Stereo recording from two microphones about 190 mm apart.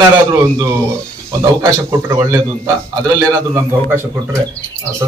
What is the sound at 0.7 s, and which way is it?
A man's voice, 15° right (ahead or behind).